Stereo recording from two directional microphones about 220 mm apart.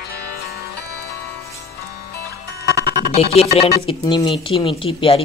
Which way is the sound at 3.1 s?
25° left (ahead or behind).